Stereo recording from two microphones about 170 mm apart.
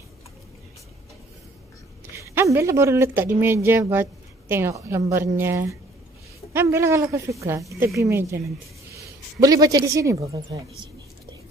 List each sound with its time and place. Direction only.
2.1 s speech: 15° right (ahead or behind)
9.4 s speech: 20° right (ahead or behind)